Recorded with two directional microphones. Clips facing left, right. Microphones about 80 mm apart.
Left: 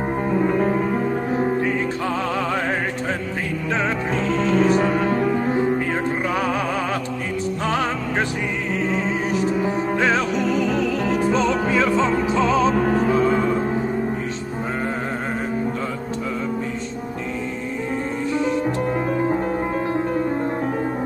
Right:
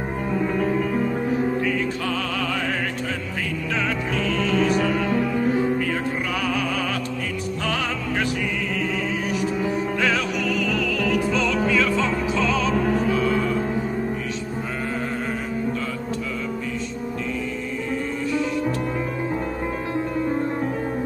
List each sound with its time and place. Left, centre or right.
1.3 s music: left
3.7 s music: left
9.7 s music: left